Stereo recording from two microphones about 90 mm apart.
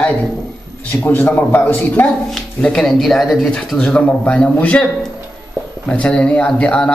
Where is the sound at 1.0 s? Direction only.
20° left (ahead or behind).